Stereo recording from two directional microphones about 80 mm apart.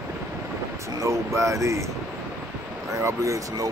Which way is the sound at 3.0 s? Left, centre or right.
Right.